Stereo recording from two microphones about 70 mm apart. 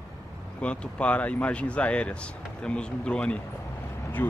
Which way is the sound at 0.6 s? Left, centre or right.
Centre.